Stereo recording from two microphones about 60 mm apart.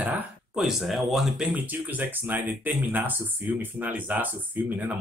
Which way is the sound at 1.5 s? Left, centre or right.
Right.